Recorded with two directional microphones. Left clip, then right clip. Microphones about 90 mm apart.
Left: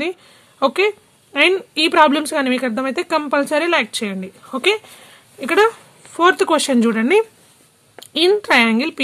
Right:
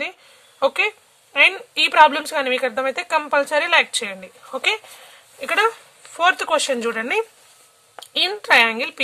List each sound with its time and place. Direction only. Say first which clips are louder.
0.6 s a woman's voice: left 3 dB; 35° left (ahead or behind)
8.0 s a woman's voice: left 6 dB; 30° left (ahead or behind)